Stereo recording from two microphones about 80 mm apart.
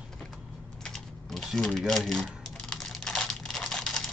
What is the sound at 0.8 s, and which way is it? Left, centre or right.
Typing, centre.